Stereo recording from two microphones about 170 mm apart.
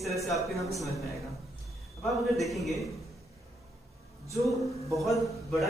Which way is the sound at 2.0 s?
Centre (ahead or behind).